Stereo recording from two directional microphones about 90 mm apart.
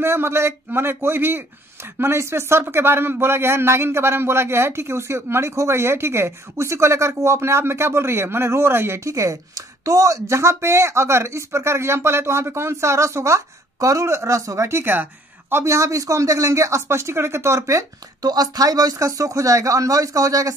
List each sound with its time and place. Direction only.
0.0 s a man's voice: 30° right (ahead or behind)
9.1 s speech: 40° right (ahead or behind)
18.2 s speech: 45° right (ahead or behind)